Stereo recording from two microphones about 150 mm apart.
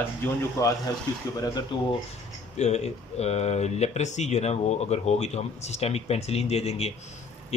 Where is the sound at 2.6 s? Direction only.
45° left (ahead or behind).